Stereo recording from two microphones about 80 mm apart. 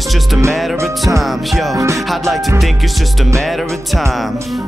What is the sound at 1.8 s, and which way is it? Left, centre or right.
Music, right.